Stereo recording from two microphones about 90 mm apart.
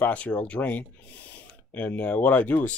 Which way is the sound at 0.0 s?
15° left (ahead or behind).